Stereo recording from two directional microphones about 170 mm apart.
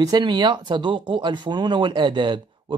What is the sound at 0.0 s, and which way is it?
Speech, 25° right (ahead or behind).